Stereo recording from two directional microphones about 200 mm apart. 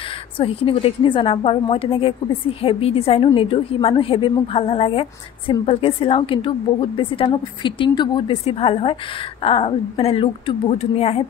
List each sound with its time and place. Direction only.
0.4 s a woman's voice: 30° left (ahead or behind)